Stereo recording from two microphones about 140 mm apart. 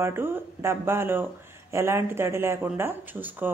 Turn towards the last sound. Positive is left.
turn(degrees=-15)  # may be behind; listen again after turning